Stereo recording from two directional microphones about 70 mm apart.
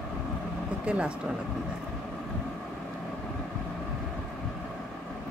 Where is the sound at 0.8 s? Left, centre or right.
Centre.